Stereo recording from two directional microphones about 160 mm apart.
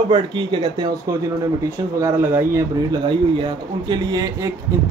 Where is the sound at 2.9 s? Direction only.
25° right (ahead or behind).